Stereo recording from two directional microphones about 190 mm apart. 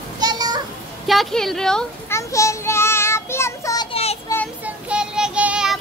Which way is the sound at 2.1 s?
15° left (ahead or behind).